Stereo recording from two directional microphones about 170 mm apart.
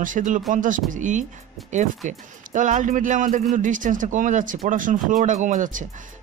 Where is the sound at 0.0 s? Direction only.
50° right (ahead or behind).